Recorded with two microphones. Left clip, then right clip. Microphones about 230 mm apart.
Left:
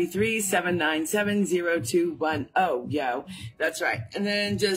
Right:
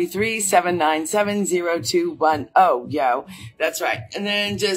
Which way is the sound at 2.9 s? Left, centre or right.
Centre.